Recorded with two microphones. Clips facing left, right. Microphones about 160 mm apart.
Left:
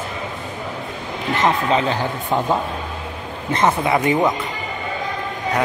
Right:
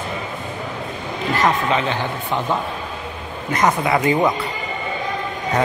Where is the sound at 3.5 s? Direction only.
25° left (ahead or behind).